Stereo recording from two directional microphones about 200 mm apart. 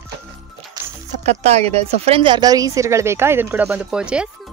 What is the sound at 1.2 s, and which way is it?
Speech, 35° right (ahead or behind).